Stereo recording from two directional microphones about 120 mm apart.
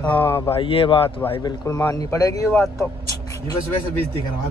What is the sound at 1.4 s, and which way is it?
A man's voice, 35° left (ahead or behind).